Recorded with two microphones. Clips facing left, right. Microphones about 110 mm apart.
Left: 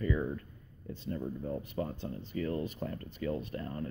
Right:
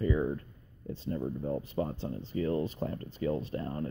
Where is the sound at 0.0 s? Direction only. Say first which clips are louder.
Right 3 dB; 20° right (ahead or behind).